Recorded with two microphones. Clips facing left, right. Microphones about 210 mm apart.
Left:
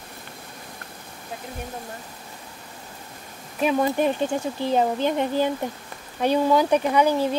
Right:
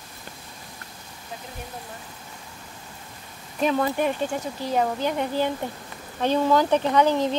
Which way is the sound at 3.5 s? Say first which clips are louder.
Left 1 dB; 10° left (ahead or behind).